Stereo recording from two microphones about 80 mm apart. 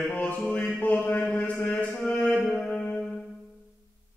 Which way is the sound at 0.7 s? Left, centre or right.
Centre.